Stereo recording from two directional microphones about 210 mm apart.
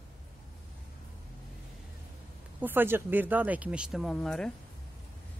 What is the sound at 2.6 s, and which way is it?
Speech, 10° right (ahead or behind).